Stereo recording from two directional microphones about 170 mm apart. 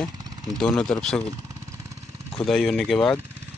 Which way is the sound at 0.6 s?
5° left (ahead or behind).